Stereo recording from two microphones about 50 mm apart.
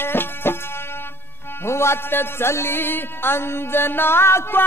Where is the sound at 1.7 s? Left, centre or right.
Left.